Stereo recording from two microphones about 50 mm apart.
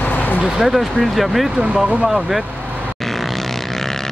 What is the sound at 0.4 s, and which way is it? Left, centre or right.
Speech, centre.